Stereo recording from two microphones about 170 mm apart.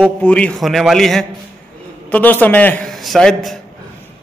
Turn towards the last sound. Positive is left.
turn(degrees=5)  # may be behind; listen again after turning